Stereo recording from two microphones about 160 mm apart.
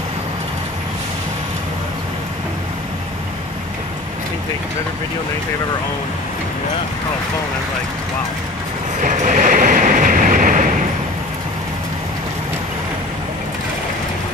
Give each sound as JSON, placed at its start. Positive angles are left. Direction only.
{"t": 9.0, "sound": "train", "side_deg": -50}